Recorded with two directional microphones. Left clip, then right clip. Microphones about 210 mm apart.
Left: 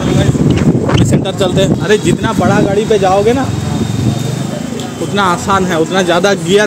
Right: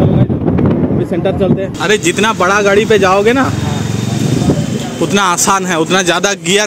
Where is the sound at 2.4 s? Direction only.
35° right (ahead or behind).